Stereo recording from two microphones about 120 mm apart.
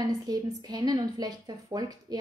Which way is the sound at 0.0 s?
35° right (ahead or behind).